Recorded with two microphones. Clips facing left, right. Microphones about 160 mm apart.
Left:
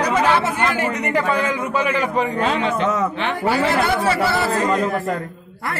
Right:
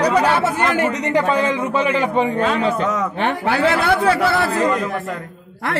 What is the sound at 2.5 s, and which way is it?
Speech, 35° right (ahead or behind).